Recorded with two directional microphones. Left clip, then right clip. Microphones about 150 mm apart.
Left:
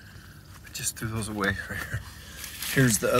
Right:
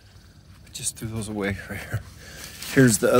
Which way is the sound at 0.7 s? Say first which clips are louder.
Even; 30° right (ahead or behind).